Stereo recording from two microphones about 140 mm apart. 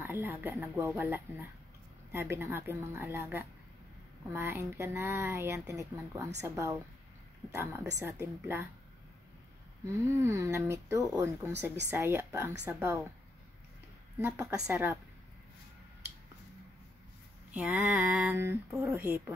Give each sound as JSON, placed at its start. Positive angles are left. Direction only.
{"t": 0.0, "sound": "speech", "side_deg": -15}
{"t": 10.2, "sound": "speech", "side_deg": -20}
{"t": 14.1, "sound": "speech", "side_deg": -20}
{"t": 17.6, "sound": "speech", "side_deg": -10}